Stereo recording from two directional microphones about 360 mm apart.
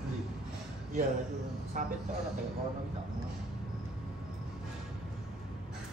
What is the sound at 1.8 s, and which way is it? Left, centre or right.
Speech, right.